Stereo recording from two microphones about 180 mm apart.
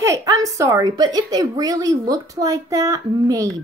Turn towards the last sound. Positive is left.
turn(degrees=-20)  # may be behind; listen again after turning